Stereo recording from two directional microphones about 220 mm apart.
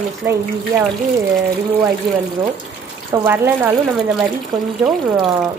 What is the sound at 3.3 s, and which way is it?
Speech, 10° right (ahead or behind).